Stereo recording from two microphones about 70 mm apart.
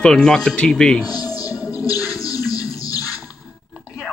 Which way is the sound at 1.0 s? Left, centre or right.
Left.